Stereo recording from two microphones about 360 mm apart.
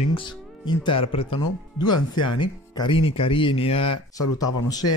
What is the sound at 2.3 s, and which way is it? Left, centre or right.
Speech, centre.